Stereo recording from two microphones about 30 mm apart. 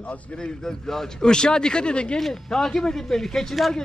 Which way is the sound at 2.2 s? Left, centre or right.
Centre.